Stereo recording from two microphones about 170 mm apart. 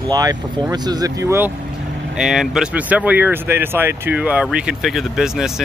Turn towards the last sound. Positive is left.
turn(degrees=-5)  # may be behind; listen again after turning